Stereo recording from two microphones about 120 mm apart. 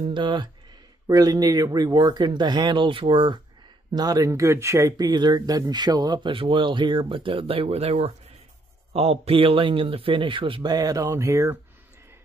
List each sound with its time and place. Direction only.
0.1 s speech: 40° right (ahead or behind)
3.9 s speech: 35° right (ahead or behind)